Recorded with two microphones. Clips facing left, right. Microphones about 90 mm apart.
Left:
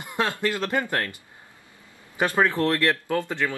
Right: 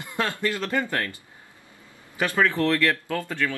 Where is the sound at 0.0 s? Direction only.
20° left (ahead or behind).